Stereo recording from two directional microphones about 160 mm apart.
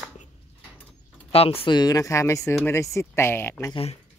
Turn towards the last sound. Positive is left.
turn(degrees=40)  # may be behind; listen again after turning